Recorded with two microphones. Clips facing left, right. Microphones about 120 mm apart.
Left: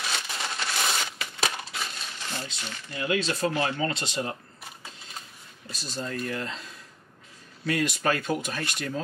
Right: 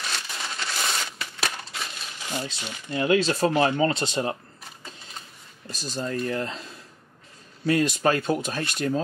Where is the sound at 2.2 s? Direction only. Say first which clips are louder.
Right 5 dB; 15° right (ahead or behind).